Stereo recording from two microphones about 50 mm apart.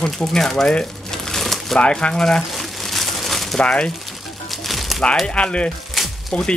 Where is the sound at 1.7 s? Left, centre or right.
Left.